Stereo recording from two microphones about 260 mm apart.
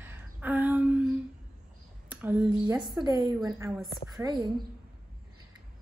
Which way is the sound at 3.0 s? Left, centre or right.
Centre.